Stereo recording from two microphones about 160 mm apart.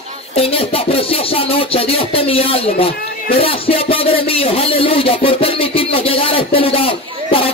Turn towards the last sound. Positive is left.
turn(degrees=35)  # may be behind; listen again after turning